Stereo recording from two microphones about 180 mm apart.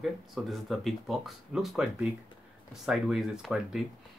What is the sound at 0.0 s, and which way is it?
Speech, centre (ahead or behind).